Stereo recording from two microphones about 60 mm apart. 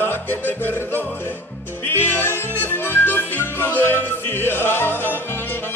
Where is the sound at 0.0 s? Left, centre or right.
Left.